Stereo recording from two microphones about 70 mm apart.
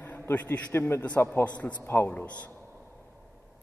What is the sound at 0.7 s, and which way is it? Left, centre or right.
Speech, left.